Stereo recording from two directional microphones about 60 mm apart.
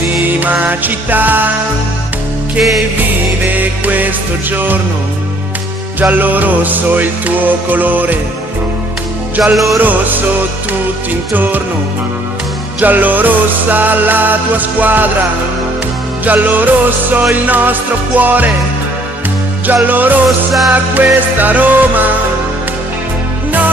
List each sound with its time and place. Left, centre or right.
0.4 s music: right
3.5 s music: right
6.1 s music: right
9.4 s music: centre
9.8 s music: right
12.8 s music: right
16.3 s music: right
19.6 s music: right
20.2 s music: centre
21.4 s music: right